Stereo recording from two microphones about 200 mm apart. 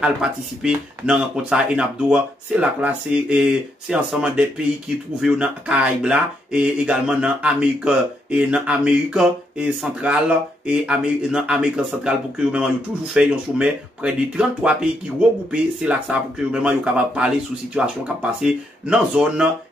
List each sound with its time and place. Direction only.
0.0 s speech: 5° right (ahead or behind)